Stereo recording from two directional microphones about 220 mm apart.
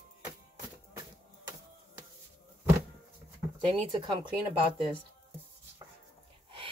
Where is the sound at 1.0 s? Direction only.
15° right (ahead or behind).